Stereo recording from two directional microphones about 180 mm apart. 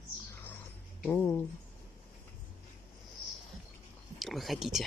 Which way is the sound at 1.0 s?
10° left (ahead or behind).